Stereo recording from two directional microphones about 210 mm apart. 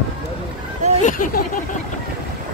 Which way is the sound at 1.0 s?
40° left (ahead or behind).